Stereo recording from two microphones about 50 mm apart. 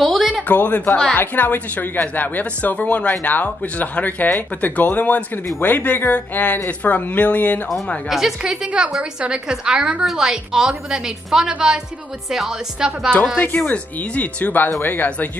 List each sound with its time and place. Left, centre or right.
0.0 s a sound: centre
0.5 s speech: left
8.1 s a woman's voice: centre
8.4 s a woman's voice: centre
13.7 s speech: left